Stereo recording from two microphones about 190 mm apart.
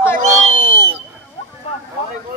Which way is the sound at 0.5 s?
80° right.